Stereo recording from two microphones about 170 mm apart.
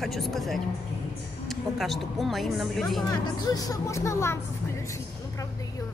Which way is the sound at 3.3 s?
20° left (ahead or behind).